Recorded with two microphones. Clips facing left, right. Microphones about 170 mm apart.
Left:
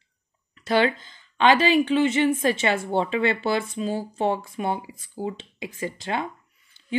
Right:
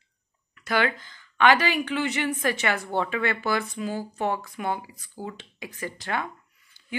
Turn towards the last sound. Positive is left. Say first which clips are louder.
# left 3 dB
turn(degrees=20)  # may be behind; listen again after turning